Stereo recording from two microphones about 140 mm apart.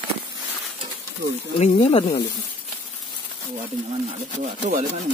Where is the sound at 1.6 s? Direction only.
45° left (ahead or behind).